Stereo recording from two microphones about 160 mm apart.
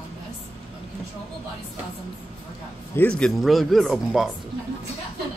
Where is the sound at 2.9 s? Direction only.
5° left (ahead or behind).